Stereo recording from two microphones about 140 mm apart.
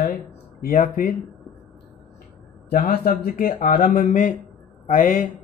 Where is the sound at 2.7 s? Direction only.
85° left.